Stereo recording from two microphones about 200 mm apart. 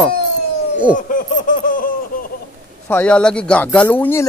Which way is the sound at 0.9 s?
40° left (ahead or behind).